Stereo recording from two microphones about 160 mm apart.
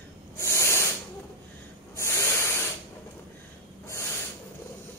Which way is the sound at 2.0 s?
15° left (ahead or behind).